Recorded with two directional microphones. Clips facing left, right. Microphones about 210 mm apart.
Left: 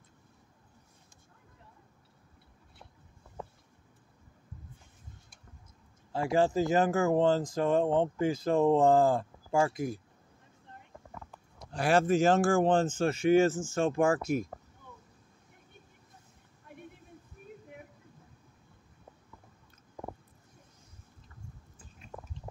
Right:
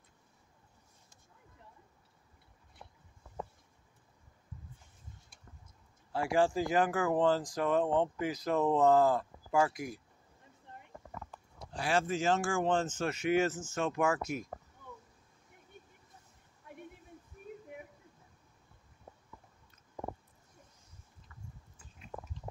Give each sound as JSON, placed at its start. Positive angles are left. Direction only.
{"t": 6.1, "sound": "speech", "side_deg": 20}
{"t": 11.8, "sound": "speech", "side_deg": 60}
{"t": 12.2, "sound": "speech", "side_deg": 40}